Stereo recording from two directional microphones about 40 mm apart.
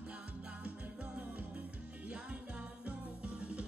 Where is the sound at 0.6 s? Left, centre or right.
Right.